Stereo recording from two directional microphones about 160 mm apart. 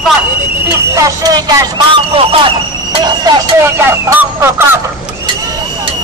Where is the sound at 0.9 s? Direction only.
20° right (ahead or behind).